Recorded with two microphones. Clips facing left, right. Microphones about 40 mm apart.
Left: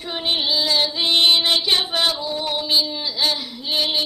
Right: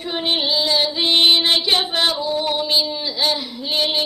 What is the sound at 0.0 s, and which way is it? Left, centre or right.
Female singing, centre.